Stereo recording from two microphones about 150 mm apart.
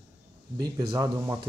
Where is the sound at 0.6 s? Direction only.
25° right (ahead or behind).